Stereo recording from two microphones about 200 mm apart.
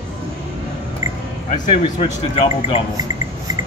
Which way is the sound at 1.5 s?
40° left (ahead or behind).